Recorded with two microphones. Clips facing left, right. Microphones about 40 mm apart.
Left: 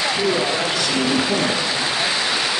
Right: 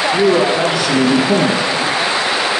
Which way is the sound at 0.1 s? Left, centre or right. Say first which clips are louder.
Right 7 dB; right.